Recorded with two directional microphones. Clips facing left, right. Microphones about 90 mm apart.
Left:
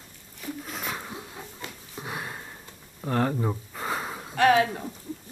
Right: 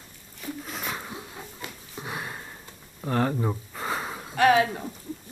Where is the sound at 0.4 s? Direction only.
Centre (ahead or behind).